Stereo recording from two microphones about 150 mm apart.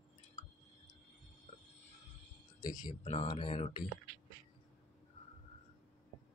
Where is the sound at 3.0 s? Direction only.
40° left (ahead or behind).